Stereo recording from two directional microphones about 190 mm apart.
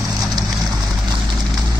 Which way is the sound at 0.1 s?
Centre (ahead or behind).